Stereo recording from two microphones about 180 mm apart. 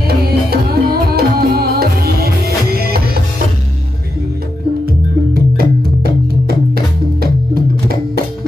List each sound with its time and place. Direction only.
0.2 s music: 60° right (ahead or behind)
5.3 s music: 60° right (ahead or behind)